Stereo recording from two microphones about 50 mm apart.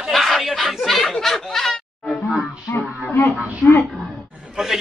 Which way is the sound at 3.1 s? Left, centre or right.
Left.